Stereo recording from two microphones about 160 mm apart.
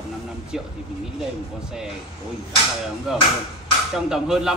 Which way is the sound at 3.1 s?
Centre (ahead or behind).